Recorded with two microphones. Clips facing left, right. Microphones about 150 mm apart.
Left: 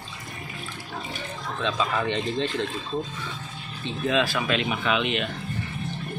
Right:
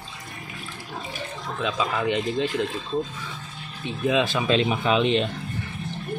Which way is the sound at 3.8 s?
15° right (ahead or behind).